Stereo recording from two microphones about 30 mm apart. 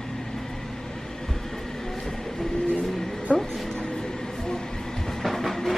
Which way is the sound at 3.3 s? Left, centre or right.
Left.